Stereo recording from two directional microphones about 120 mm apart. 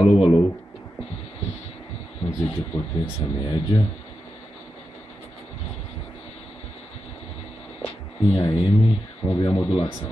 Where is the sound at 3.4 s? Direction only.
40° left (ahead or behind).